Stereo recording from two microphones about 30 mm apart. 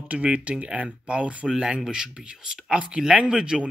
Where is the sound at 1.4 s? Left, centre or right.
Right.